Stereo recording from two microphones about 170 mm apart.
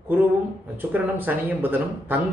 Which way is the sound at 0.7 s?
10° right (ahead or behind).